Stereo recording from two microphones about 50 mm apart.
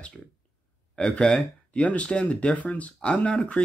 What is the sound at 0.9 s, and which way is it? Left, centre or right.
Speech, left.